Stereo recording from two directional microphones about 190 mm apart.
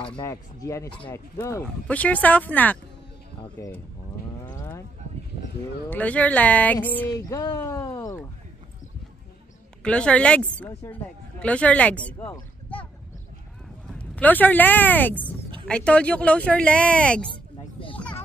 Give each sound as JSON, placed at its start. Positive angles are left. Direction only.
{"t": 0.1, "sound": "speech", "side_deg": 15}
{"t": 3.3, "sound": "speech", "side_deg": 25}
{"t": 5.9, "sound": "speech", "side_deg": 10}
{"t": 9.8, "sound": "speech", "side_deg": 5}
{"t": 13.8, "sound": "speech", "side_deg": 5}
{"t": 17.3, "sound": "a sound", "side_deg": 30}